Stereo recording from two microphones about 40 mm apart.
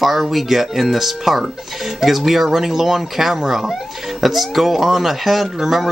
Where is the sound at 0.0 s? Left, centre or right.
Centre.